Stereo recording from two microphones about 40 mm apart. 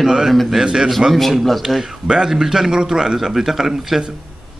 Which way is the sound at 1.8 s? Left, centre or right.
Centre.